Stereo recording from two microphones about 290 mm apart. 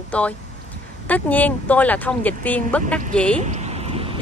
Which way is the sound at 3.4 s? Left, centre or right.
Right.